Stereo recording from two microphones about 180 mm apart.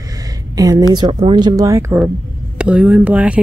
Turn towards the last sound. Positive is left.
turn(degrees=-5)  # may be behind; listen again after turning